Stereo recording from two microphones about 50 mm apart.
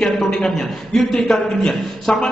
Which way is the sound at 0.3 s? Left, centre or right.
Centre.